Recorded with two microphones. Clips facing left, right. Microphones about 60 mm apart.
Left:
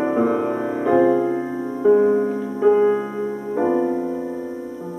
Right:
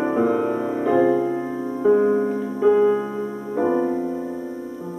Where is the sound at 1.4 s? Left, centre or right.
Left.